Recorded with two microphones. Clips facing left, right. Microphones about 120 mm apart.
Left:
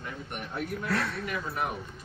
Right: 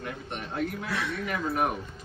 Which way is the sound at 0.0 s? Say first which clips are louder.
Right 2 dB; 80° right.